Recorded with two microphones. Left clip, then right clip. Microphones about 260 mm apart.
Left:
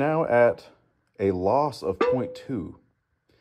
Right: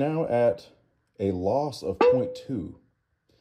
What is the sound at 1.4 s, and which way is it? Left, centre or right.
Speech, centre.